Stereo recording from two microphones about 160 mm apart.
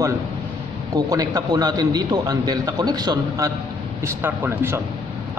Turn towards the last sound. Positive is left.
turn(degrees=-15)  # may be behind; listen again after turning